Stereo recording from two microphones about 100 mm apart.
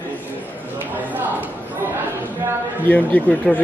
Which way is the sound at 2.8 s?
15° left (ahead or behind).